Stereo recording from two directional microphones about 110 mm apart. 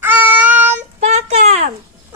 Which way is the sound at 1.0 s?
75° right (ahead or behind).